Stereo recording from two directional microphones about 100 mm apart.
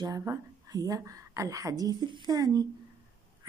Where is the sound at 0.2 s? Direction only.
35° right (ahead or behind).